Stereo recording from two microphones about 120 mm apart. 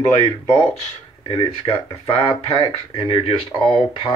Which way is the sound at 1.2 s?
45° left (ahead or behind).